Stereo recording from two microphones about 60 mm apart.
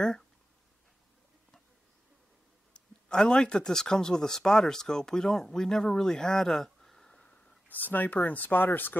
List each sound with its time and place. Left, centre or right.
2.7 s speech: centre
7.7 s speech: left